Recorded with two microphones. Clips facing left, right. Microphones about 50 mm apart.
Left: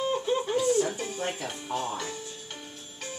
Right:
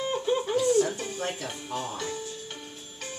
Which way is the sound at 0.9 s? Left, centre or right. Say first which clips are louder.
Even; centre.